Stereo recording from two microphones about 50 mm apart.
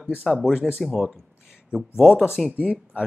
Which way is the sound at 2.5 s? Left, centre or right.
Right.